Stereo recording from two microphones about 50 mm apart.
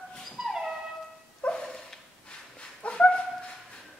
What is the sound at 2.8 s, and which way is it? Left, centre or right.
Dog, centre.